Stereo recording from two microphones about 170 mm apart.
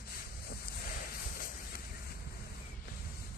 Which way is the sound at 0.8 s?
55° left (ahead or behind).